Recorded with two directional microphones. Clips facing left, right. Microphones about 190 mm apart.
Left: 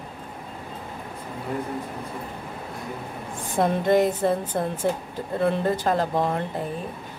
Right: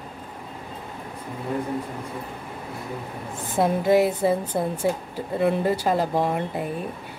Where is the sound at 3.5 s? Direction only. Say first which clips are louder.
Right 1 dB; 5° right (ahead or behind).